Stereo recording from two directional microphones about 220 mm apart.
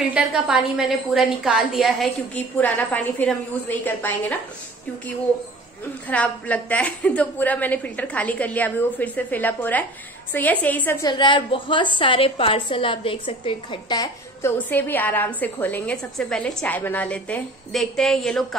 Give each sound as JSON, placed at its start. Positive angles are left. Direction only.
{"t": 0.1, "sound": "a woman's voice", "side_deg": -5}
{"t": 6.0, "sound": "a woman's voice", "side_deg": 5}